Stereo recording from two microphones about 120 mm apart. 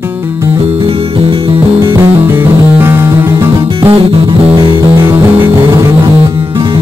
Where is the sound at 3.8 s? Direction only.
50° right (ahead or behind).